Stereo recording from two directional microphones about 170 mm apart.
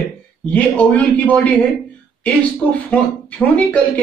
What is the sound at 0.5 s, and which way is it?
Speech, 10° left (ahead or behind).